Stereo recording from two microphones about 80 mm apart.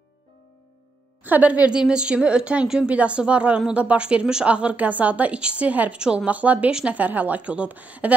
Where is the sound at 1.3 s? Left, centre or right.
Centre.